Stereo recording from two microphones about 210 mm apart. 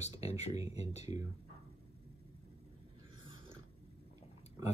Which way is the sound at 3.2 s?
20° right (ahead or behind).